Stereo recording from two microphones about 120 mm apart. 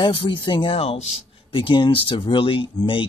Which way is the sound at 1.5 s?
40° left (ahead or behind).